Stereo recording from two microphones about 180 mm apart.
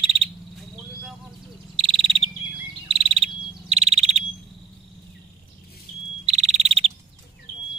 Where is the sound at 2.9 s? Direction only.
30° right (ahead or behind).